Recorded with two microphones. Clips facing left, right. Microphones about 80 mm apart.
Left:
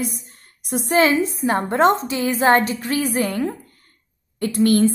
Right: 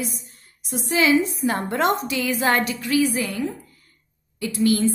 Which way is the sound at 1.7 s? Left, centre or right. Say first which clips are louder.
Left 7 dB; left.